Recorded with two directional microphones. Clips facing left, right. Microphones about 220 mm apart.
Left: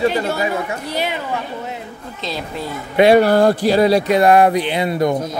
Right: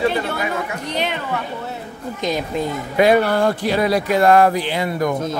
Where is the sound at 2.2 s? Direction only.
15° right (ahead or behind).